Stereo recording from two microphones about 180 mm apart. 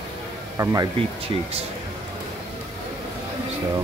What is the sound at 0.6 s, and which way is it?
Speech, 25° right (ahead or behind).